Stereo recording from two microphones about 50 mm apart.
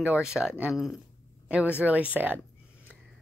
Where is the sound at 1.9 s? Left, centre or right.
Right.